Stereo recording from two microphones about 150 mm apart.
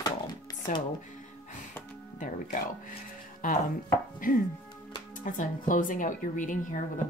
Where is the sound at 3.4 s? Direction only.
65° left (ahead or behind).